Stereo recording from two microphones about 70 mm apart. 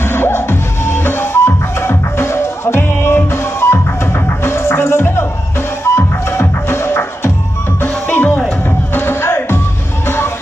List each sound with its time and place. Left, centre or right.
0.0 s music: left